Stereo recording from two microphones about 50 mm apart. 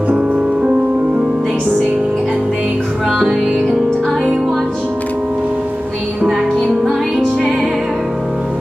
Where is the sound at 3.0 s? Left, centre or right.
Centre.